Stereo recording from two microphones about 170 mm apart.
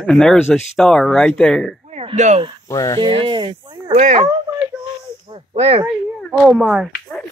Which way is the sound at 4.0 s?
45° right (ahead or behind).